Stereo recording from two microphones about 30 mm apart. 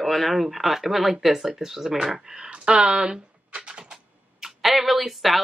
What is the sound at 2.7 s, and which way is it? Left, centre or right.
Speech, right.